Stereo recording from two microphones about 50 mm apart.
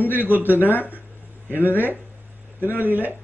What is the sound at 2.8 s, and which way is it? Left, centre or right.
Speech, right.